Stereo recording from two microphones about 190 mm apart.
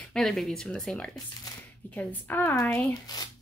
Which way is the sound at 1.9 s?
10° left (ahead or behind).